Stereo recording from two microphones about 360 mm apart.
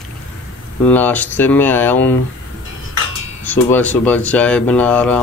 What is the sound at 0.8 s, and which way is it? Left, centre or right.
Speech, centre.